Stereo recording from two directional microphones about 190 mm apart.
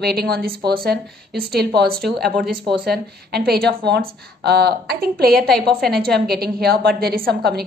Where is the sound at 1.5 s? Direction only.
55° right (ahead or behind).